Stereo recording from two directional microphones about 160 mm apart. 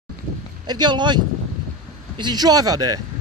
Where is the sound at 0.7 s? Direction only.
30° right (ahead or behind).